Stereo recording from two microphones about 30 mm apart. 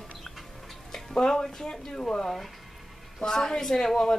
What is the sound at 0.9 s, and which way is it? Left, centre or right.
Music, left.